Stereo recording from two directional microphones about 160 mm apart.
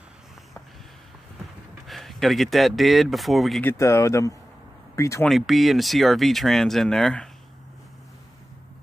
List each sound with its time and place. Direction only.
1.9 s speech: centre (ahead or behind)
3.6 s speech: 15° left (ahead or behind)
5.3 s speech: centre (ahead or behind)